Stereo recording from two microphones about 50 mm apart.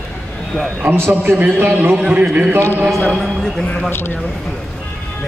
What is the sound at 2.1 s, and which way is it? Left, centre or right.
Speech, right.